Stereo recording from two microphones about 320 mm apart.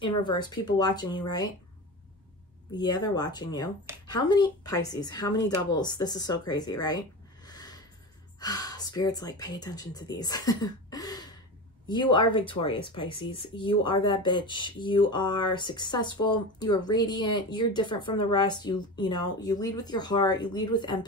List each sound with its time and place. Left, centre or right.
0.0 s speech: centre
2.7 s speech: centre